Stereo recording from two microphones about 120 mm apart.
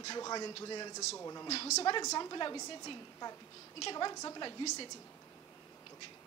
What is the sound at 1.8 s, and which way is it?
A woman's voice, 35° left (ahead or behind).